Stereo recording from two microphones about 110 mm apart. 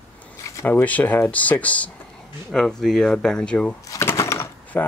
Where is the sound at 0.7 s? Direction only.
15° left (ahead or behind).